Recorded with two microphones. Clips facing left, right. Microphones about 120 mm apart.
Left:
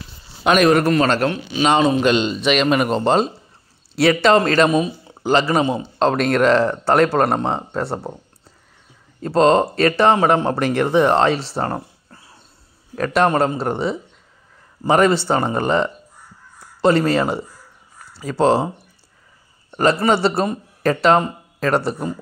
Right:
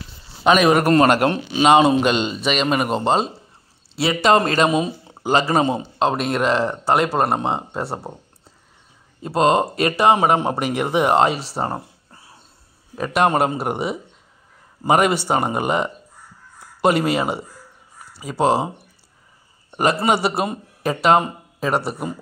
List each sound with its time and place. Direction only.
0.4 s a man's voice: centre (ahead or behind)
4.0 s speech: 10° right (ahead or behind); by 5.9 s 30° right (ahead or behind)
5.9 s a man's voice: 5° right (ahead or behind)
9.2 s speech: 10° right (ahead or behind)
19.7 s a man's voice: 15° right (ahead or behind)